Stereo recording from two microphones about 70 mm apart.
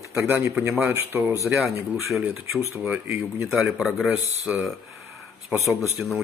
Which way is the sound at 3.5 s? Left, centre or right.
Centre.